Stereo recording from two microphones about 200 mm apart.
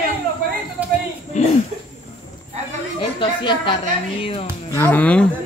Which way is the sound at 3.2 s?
25° left (ahead or behind).